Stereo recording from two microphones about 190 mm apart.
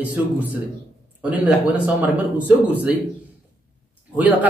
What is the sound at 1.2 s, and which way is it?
A man's voice, 5° right (ahead or behind).